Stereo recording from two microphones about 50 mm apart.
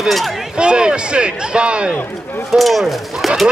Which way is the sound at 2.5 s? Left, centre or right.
Centre.